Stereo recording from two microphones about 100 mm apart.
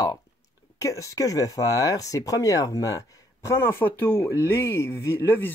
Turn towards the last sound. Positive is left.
turn(degrees=20)  # may be behind; listen again after turning